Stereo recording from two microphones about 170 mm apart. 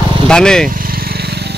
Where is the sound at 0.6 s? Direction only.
55° right (ahead or behind).